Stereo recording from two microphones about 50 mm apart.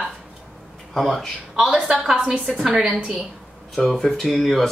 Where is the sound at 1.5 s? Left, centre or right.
Centre.